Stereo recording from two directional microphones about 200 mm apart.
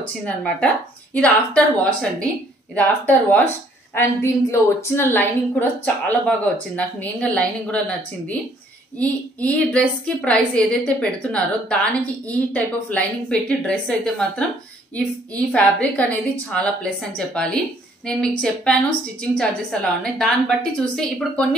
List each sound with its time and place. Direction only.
0.0 s a woman's voice: 5° left (ahead or behind)
8.9 s a woman's voice: 5° left (ahead or behind)
15.5 s a woman's voice: 5° left (ahead or behind)